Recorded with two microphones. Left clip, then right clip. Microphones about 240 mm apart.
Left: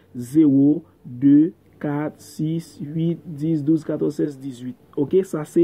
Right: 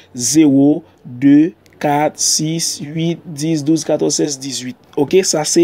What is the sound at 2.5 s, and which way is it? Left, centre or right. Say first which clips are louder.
Speech: right 9 dB; right.